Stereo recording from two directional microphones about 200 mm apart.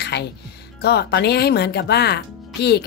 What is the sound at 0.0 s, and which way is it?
Music, 55° left (ahead or behind).